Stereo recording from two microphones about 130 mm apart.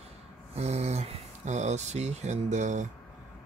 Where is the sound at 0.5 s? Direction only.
55° right (ahead or behind).